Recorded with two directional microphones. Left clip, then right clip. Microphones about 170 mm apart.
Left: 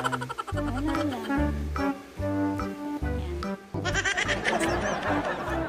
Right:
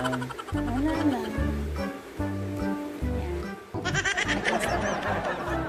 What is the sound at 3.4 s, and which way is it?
Music, centre (ahead or behind).